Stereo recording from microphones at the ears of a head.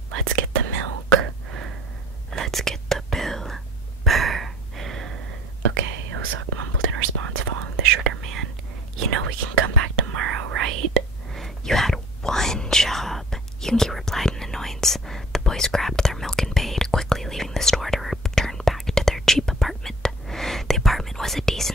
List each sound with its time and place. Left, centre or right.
0.1 s whispering: right
4.0 s a sound: right
5.6 s whispering: right
11.6 s whispering: centre